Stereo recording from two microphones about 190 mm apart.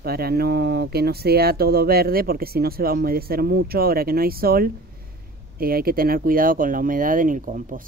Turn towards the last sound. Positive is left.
turn(degrees=-45)  # may be behind; listen again after turning